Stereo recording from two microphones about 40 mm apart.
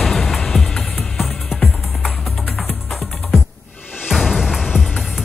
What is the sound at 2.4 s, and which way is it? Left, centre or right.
Music, centre.